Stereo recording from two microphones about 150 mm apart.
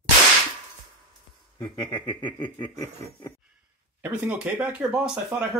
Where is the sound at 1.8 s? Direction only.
35° left (ahead or behind).